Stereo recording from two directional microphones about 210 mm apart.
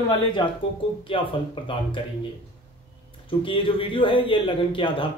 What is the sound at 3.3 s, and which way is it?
Speech, 25° left (ahead or behind).